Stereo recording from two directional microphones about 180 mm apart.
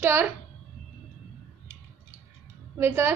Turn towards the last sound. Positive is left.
turn(degrees=-15)  # may be behind; listen again after turning